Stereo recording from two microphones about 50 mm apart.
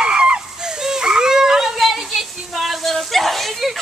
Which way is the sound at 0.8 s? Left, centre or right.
Centre.